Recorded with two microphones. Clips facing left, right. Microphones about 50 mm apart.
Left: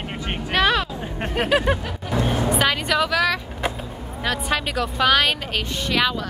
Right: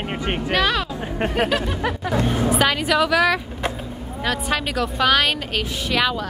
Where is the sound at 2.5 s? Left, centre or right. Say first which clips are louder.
Right 2 dB; centre.